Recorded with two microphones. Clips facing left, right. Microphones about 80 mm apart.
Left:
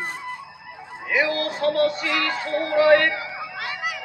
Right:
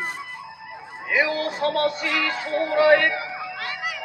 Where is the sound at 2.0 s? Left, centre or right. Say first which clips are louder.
Left 1 dB; centre.